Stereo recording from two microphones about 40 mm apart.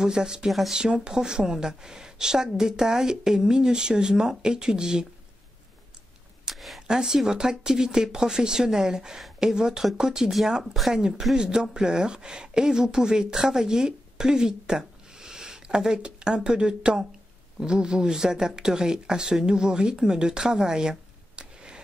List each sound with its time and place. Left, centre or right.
0.0 s a woman's voice: centre
0.5 s speech: centre
0.7 s a woman's voice: centre
6.5 s a sound: centre
6.9 s a woman's voice: centre